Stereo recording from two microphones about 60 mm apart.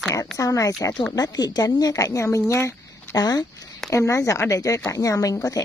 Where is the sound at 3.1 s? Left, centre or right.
Left.